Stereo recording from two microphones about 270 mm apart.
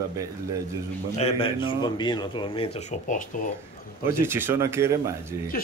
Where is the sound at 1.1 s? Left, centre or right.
Left.